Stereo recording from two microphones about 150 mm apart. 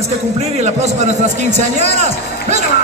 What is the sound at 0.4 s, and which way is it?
A man's voice, 45° right (ahead or behind).